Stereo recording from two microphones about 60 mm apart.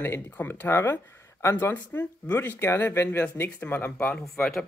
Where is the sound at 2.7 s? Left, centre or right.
Left.